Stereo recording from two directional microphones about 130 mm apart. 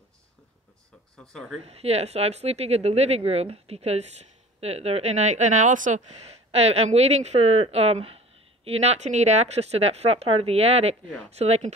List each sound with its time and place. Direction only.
1.1 s speech: 5° left (ahead or behind)
1.6 s speech: 55° right (ahead or behind)